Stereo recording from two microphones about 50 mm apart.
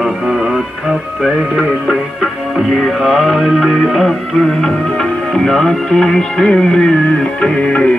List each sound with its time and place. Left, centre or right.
1.2 s music: centre
3.1 s music: centre
7.4 s music: left